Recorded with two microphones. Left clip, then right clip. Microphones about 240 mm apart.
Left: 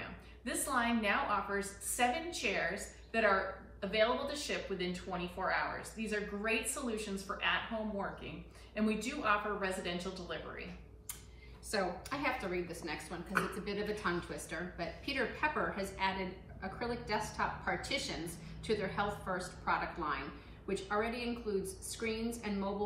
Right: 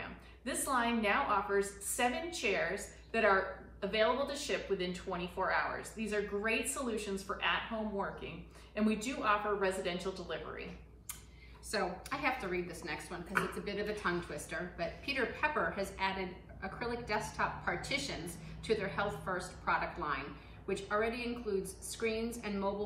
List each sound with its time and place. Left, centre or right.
0.7 s a woman's voice: centre
8.7 s speech: centre
11.7 s speech: centre